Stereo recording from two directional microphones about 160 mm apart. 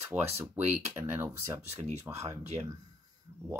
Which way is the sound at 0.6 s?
45° right (ahead or behind).